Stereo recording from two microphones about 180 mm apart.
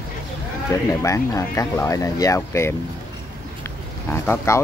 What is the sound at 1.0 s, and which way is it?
Speech, 15° left (ahead or behind).